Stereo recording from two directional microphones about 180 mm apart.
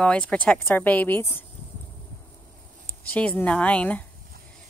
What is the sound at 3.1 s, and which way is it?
Speech, 5° left (ahead or behind).